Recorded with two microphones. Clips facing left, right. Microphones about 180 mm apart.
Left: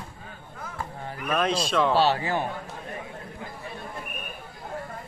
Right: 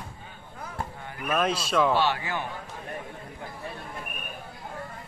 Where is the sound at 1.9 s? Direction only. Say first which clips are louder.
Left 4 dB; 35° left (ahead or behind).